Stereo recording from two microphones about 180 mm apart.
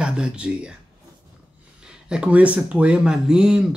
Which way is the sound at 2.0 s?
5° right (ahead or behind).